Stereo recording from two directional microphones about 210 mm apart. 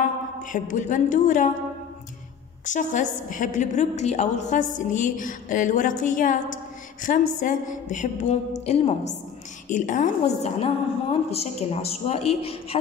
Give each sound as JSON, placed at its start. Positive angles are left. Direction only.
{"t": 0.4, "sound": "a woman's voice", "side_deg": 40}
{"t": 2.6, "sound": "a woman's voice", "side_deg": 35}